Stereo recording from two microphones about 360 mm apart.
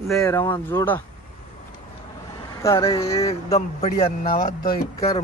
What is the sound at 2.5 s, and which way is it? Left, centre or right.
A man's voice, centre.